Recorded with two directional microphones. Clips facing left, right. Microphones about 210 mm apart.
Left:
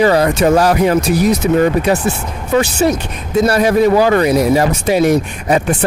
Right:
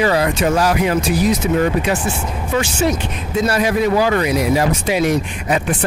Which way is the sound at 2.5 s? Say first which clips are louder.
Left 5 dB; 40° left (ahead or behind).